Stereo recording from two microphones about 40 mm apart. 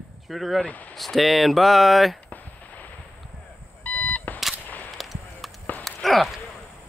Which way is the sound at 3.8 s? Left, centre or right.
Left.